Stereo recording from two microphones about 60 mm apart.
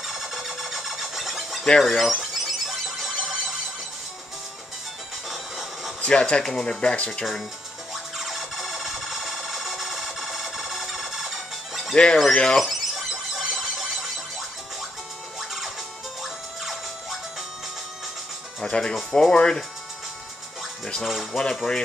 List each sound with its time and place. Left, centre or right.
0.0 s a sound: centre
5.3 s music: centre
5.9 s speech: centre
7.9 s music: centre
11.9 s speech: centre
12.6 s a sound: centre
16.2 s music: centre
18.6 s speech: centre
20.8 s speech: centre